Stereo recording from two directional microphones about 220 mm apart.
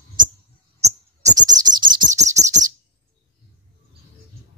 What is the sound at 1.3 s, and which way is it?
Beatboxing, 20° right (ahead or behind).